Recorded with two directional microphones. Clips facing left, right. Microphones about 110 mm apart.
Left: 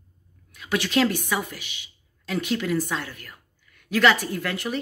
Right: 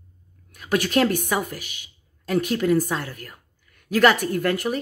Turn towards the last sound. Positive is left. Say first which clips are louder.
# right 5 dB
turn(degrees=-45)  # may be behind; listen again after turning